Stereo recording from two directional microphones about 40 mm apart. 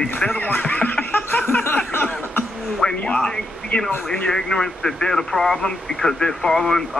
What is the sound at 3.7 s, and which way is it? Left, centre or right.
Speech, left.